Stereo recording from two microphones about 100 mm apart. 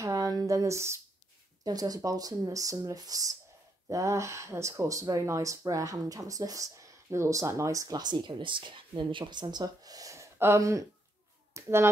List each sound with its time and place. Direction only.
0.0 s speech: 35° right (ahead or behind)
1.6 s speech: 40° right (ahead or behind)